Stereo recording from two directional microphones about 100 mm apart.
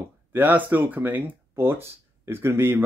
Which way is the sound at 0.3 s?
20° right (ahead or behind).